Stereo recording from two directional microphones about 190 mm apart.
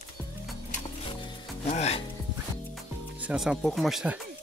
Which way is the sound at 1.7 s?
35° left (ahead or behind).